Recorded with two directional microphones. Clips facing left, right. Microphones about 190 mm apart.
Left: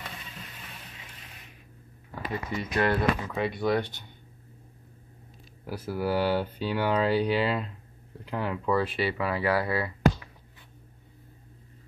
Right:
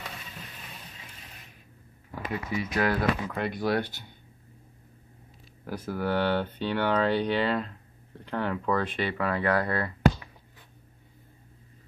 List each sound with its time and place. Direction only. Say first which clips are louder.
2.5 s speech: left 1 dB; 5° right (ahead or behind)
5.7 s speech: left 1 dB; 5° left (ahead or behind)